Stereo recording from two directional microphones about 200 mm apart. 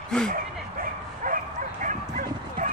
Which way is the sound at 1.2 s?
40° right (ahead or behind).